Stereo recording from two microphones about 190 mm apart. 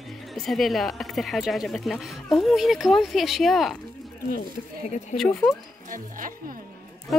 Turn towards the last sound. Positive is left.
turn(degrees=-45)  # may be behind; listen again after turning